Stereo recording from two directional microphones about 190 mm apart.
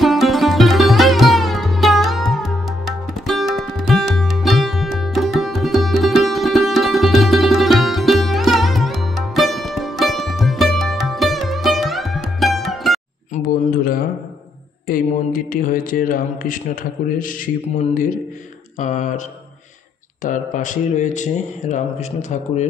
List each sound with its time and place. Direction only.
0.0 s sitar: centre (ahead or behind)
3.3 s music: centre (ahead or behind)
13.3 s a sound: 50° left (ahead or behind)
17.9 s speech: 45° left (ahead or behind)
20.2 s speech: 40° left (ahead or behind)